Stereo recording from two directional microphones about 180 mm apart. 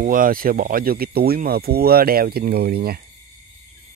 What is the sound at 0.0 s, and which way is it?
Speech, 50° right (ahead or behind).